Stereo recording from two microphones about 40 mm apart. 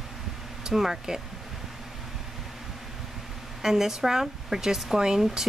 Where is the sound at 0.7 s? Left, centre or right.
Centre.